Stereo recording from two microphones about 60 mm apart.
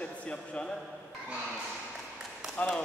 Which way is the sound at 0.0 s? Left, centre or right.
Left.